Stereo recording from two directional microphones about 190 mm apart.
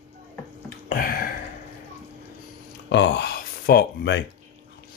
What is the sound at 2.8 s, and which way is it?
Speech, 65° left (ahead or behind).